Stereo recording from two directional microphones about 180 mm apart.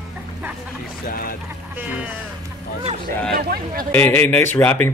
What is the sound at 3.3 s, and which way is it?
Speech, 55° right (ahead or behind).